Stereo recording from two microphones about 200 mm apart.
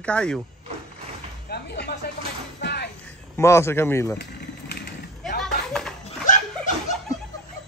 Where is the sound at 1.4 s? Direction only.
55° left (ahead or behind).